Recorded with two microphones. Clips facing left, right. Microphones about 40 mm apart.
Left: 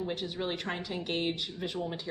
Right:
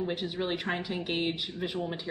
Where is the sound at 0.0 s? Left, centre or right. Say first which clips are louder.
Right 2 dB; centre.